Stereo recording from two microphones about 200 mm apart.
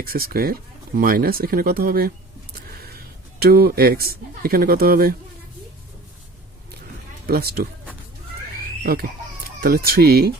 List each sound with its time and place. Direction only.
0.0 s speech: 50° right (ahead or behind)
2.6 s a sound: 50° right (ahead or behind)
3.4 s speech: 50° right (ahead or behind)
7.2 s speech: 50° right (ahead or behind)
8.5 s a sound: 50° right (ahead or behind)
9.6 s speech: 50° right (ahead or behind)